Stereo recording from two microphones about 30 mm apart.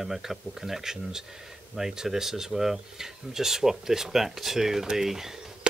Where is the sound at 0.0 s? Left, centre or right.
Centre.